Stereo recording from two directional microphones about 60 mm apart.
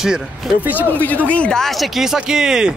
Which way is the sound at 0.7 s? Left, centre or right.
Left.